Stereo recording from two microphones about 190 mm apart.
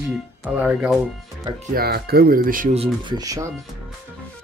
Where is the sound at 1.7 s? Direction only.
55° right (ahead or behind).